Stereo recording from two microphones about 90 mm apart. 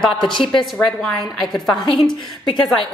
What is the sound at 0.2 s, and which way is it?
Speech, 65° left (ahead or behind).